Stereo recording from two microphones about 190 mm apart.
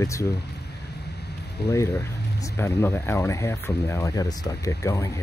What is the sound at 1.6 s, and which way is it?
Speech, 15° left (ahead or behind).